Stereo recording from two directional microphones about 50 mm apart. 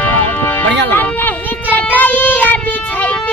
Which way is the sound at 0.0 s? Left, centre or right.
Left.